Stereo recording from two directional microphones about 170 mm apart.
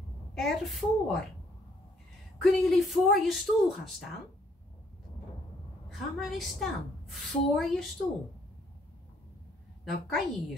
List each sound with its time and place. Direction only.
0.3 s a woman's voice: centre (ahead or behind)
2.4 s a woman's voice: centre (ahead or behind)
5.9 s a woman's voice: centre (ahead or behind)
9.8 s a woman's voice: centre (ahead or behind)